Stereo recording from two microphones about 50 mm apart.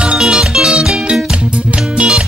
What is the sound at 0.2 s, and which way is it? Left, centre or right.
Music, centre.